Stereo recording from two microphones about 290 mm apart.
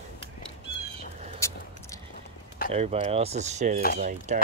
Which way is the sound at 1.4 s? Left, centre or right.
Centre.